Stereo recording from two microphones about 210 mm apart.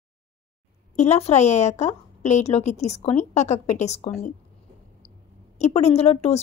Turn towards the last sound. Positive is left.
turn(degrees=30)  # may be behind; listen again after turning